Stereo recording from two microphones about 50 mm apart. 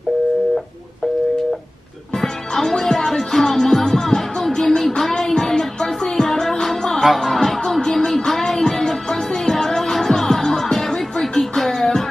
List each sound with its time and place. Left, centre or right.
2.2 s music: centre